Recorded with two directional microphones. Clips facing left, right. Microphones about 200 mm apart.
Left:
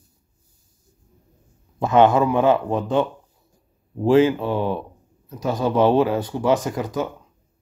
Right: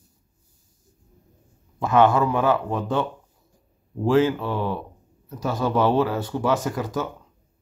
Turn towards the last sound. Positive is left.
turn(degrees=15)  # may be behind; listen again after turning